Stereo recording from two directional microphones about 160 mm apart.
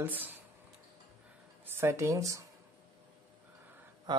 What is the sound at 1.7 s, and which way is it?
Speech, 15° right (ahead or behind).